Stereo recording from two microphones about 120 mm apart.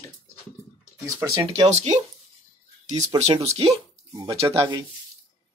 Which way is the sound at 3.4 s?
60° right (ahead or behind).